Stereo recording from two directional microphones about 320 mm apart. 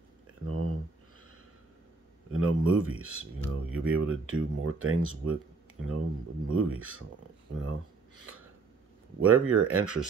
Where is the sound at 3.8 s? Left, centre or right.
Right.